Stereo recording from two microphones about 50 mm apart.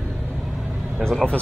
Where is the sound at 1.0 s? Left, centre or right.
Centre.